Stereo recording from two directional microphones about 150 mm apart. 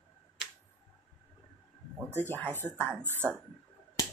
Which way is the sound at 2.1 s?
15° left (ahead or behind).